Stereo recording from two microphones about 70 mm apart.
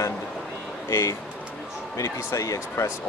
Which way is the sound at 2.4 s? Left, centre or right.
Left.